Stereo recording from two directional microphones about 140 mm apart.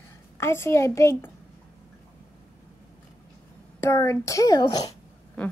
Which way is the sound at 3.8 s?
20° left (ahead or behind).